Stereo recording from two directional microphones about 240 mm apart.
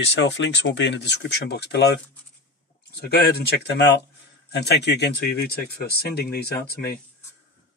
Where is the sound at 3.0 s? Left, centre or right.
Left.